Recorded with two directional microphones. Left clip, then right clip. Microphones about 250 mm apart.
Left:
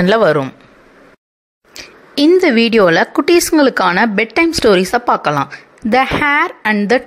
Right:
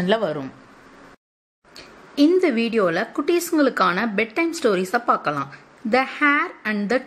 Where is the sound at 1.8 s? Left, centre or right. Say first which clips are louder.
Left 5 dB; left.